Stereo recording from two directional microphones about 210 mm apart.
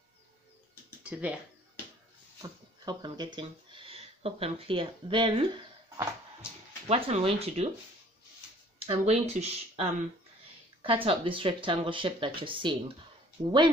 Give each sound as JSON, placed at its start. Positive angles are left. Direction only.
{"t": 1.0, "sound": "speech", "side_deg": -5}
{"t": 2.4, "sound": "speech", "side_deg": -20}
{"t": 8.8, "sound": "speech", "side_deg": -30}